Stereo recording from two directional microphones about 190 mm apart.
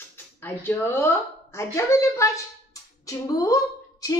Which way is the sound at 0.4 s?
10° left (ahead or behind).